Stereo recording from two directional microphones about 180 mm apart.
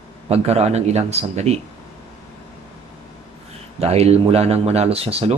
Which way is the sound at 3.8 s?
35° right (ahead or behind).